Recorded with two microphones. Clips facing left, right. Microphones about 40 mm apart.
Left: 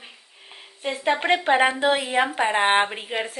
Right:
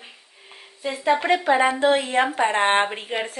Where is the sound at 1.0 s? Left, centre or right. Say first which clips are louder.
Right 1 dB; left.